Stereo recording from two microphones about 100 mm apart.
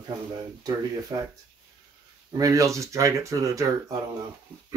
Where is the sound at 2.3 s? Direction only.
35° right (ahead or behind).